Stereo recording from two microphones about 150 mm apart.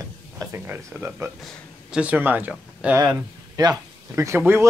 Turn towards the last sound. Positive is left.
turn(degrees=-15)  # may be behind; listen again after turning